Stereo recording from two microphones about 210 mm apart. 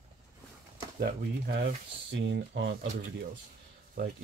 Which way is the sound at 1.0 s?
45° right (ahead or behind).